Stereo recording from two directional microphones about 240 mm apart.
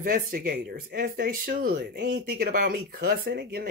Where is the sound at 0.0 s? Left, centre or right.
Right.